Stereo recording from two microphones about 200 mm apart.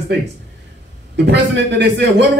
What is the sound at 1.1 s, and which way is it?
Speech, 60° right (ahead or behind).